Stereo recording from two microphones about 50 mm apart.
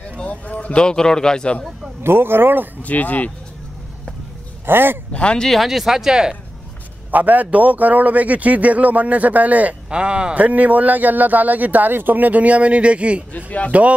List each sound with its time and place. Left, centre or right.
0.2 s a sound: left
0.8 s a man's voice: centre
2.0 s speech: right
2.8 s speech: left
4.6 s speech: right
5.1 s speech: left
5.5 s speech: centre
7.1 s a man's voice: right
9.8 s a man's voice: centre